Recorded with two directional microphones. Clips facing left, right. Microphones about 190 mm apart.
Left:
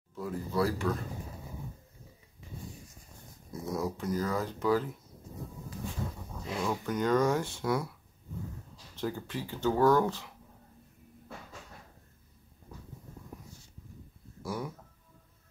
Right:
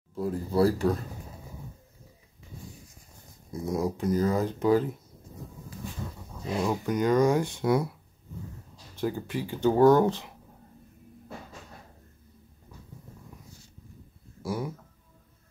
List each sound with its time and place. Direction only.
0.1 s speech: 35° right (ahead or behind)
3.7 s speech: 15° right (ahead or behind)
6.6 s speech: 15° right (ahead or behind)
8.9 s speech: 10° right (ahead or behind)
14.4 s a sound: 10° right (ahead or behind)